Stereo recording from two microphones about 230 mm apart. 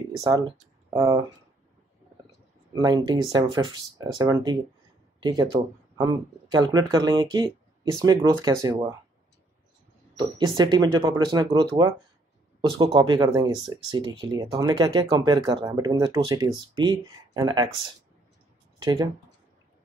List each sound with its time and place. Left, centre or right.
0.2 s speech: centre
2.7 s speech: centre
10.1 s speech: centre
18.8 s speech: right